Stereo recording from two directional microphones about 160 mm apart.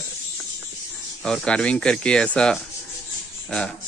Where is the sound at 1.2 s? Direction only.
5° left (ahead or behind).